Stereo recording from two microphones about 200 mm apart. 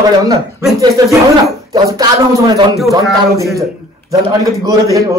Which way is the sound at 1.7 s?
20° right (ahead or behind).